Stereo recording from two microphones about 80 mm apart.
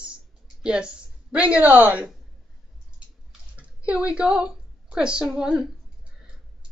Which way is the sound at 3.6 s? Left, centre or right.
Centre.